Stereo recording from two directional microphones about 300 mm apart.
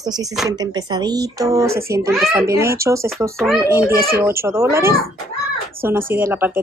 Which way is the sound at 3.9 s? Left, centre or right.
Right.